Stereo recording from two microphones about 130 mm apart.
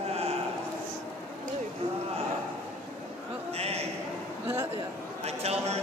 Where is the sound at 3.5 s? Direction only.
50° right (ahead or behind).